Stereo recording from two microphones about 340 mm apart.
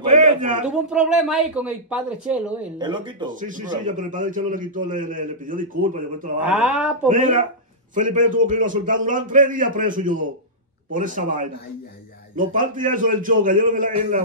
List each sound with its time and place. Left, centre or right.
0.1 s a sound: right
0.7 s speech: centre; by 6.3 s right
6.4 s speech: centre
7.1 s speech: right